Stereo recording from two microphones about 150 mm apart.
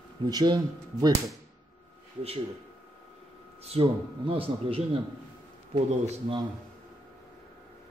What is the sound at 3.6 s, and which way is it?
A man's voice, 40° right (ahead or behind).